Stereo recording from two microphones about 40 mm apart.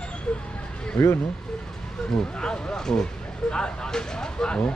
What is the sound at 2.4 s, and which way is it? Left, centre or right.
Speech, left.